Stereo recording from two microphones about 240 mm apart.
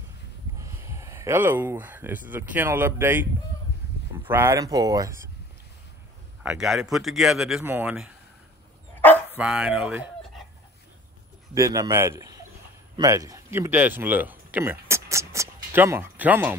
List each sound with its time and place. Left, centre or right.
0.6 s speech: centre
6.4 s a man's voice: centre
9.0 s dog: centre
9.4 s speech: centre
11.5 s speech: centre